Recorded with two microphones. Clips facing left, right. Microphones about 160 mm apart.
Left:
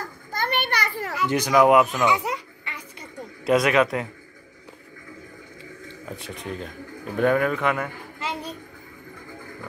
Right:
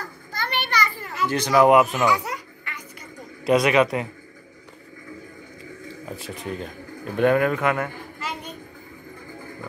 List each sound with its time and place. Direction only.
0.3 s children playing: 50° left (ahead or behind); by 1.1 s 70° left (ahead or behind)
1.2 s speech: 15° left (ahead or behind)
1.5 s speech: centre (ahead or behind)
2.0 s a sound: 20° left (ahead or behind)
3.4 s speech: centre (ahead or behind)
5.9 s speech: centre (ahead or behind)
8.2 s a sound: 35° left (ahead or behind)